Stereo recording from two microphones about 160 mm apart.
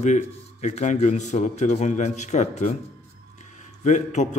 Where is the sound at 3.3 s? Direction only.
50° left (ahead or behind).